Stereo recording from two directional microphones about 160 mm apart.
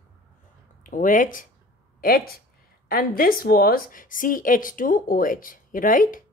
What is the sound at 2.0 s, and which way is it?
Speech, 65° left (ahead or behind).